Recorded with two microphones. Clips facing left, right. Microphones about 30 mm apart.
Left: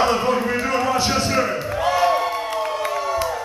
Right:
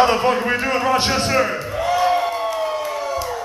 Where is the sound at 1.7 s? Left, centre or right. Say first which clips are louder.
Even; centre.